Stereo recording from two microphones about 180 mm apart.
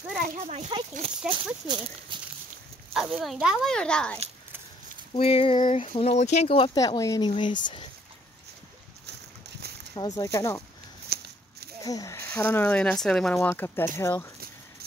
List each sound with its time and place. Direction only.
0.7 s speech: 25° right (ahead or behind)
2.9 s speech: 5° right (ahead or behind)
5.1 s speech: 30° left (ahead or behind)
9.9 s speech: 20° left (ahead or behind)
11.1 s walk: 65° right (ahead or behind)
11.8 s speech: 20° left (ahead or behind)